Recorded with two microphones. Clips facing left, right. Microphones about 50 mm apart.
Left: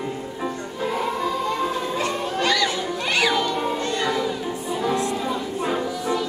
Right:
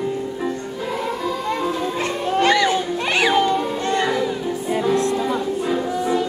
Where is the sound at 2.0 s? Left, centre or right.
Right.